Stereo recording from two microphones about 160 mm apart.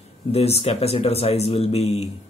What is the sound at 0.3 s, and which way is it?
Speech, 40° left (ahead or behind).